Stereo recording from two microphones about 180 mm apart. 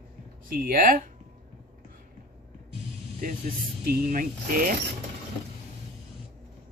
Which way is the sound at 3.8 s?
50° right (ahead or behind).